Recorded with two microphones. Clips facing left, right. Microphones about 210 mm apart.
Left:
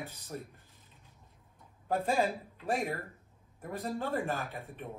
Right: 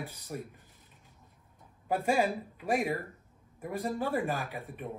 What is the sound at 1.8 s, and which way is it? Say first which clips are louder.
Speech: right 2 dB; 10° right (ahead or behind).